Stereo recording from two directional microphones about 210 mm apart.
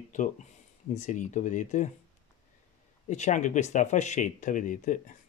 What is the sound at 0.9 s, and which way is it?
Speech, 35° left (ahead or behind).